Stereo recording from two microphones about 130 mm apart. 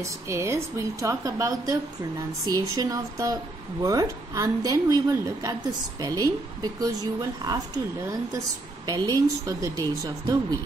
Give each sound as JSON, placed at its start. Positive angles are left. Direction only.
{"t": 0.0, "sound": "a woman's voice", "side_deg": -20}
{"t": 8.8, "sound": "a woman's voice", "side_deg": -30}